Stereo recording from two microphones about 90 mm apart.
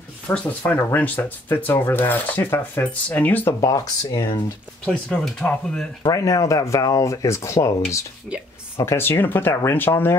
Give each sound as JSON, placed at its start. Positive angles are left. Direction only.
{"t": 0.5, "sound": "speech", "side_deg": 20}
{"t": 3.6, "sound": "speech", "side_deg": 40}
{"t": 4.8, "sound": "speech", "side_deg": 5}
{"t": 6.0, "sound": "speech", "side_deg": 40}
{"t": 8.7, "sound": "speech", "side_deg": 30}